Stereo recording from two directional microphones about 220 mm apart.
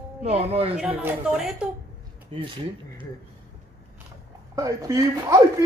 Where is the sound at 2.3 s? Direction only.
25° right (ahead or behind).